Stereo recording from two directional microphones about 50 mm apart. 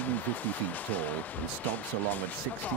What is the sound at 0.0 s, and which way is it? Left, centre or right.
Speech, left.